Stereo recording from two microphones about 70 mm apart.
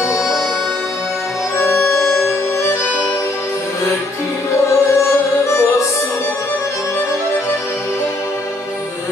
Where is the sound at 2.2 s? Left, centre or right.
Left.